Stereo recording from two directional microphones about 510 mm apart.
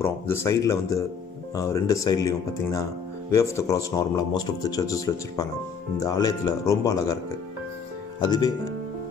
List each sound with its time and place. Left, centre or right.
0.0 s speech: centre
8.2 s speech: centre